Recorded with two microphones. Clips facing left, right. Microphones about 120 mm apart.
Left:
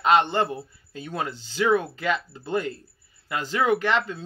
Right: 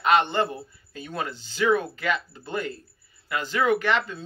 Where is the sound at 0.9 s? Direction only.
20° left (ahead or behind).